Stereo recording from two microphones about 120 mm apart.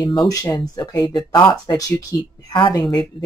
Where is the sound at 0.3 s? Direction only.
30° left (ahead or behind).